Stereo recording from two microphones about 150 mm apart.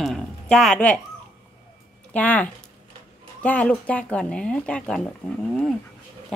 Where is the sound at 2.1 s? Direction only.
10° left (ahead or behind).